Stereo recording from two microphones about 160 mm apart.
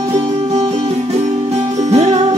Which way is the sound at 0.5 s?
35° right (ahead or behind).